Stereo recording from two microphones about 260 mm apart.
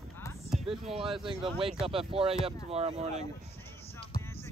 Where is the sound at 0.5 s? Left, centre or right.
Centre.